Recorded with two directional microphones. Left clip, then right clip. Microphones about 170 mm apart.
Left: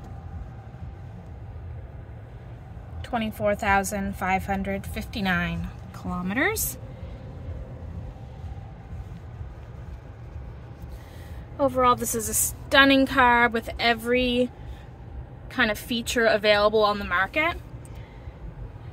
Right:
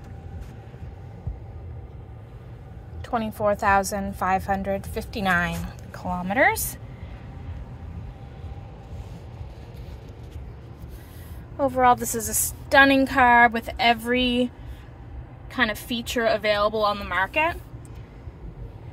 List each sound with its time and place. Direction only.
3.3 s a woman's voice: 10° right (ahead or behind)
6.0 s a woman's voice: 5° left (ahead or behind)
11.5 s a woman's voice: 5° right (ahead or behind)
15.5 s a woman's voice: 5° left (ahead or behind)